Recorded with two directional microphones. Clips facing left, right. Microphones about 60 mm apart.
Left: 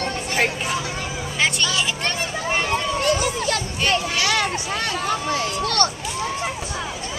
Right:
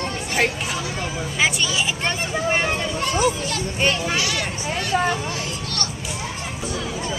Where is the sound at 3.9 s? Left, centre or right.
Left.